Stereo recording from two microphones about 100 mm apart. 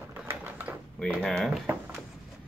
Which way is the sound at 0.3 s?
20° right (ahead or behind).